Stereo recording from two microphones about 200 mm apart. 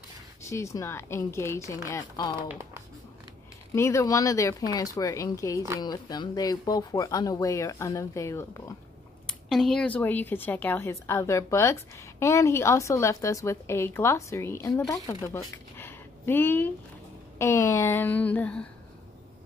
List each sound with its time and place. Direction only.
0.4 s a woman's voice: 15° left (ahead or behind)
3.7 s a woman's voice: 15° left (ahead or behind)
9.5 s a woman's voice: centre (ahead or behind)